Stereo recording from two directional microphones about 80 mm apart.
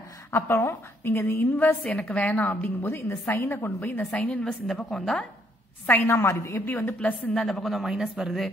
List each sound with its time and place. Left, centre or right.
0.5 s a woman's voice: left
1.8 s a woman's voice: centre
6.0 s a woman's voice: left
6.7 s a woman's voice: left
7.3 s speech: centre